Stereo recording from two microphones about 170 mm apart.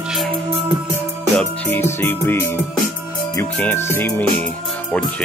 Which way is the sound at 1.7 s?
15° left (ahead or behind).